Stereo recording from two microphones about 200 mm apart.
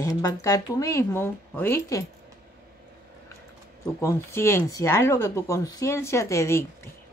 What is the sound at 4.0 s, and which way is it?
Speech, 15° left (ahead or behind).